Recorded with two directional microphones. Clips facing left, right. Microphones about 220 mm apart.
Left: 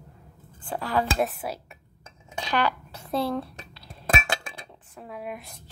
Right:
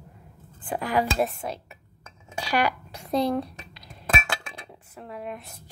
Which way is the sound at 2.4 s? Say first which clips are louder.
Right 1 dB; 10° right (ahead or behind).